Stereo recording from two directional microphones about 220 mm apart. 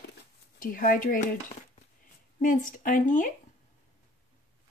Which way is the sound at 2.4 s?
35° left (ahead or behind).